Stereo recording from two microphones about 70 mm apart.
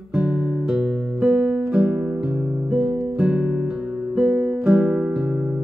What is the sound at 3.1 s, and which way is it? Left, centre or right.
Music, right.